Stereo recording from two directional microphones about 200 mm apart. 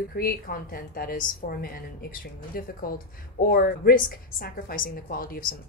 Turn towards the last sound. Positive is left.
turn(degrees=45)  # may be behind; listen again after turning